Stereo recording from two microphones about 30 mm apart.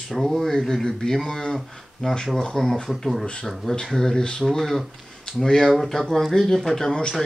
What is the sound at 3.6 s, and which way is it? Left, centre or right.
Speech, centre.